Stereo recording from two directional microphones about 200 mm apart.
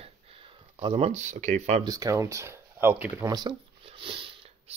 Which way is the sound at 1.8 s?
15° right (ahead or behind).